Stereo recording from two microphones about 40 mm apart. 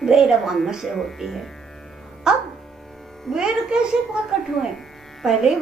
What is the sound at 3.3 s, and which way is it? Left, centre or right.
Child singing, centre.